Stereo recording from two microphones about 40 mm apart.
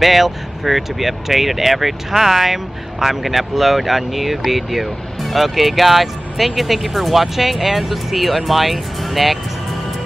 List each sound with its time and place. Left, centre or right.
0.0 s speech: centre